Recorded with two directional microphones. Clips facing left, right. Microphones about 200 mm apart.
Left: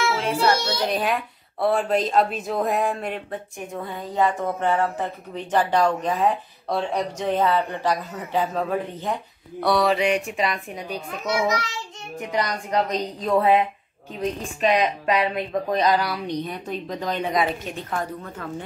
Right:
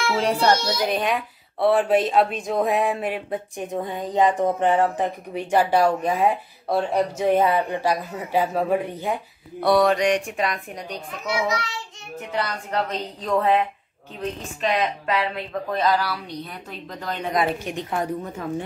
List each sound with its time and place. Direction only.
0.2 s child singing: 35° right (ahead or behind)
0.8 s a woman's voice: centre (ahead or behind)
3.5 s speech: 20° right (ahead or behind); by 11.4 s centre (ahead or behind)
12.2 s speech: 15° left (ahead or behind)
17.2 s a woman's voice: centre (ahead or behind)
17.6 s speech: 15° right (ahead or behind)